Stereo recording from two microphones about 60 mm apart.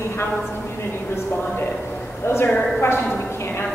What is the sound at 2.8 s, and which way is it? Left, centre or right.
Speech, left.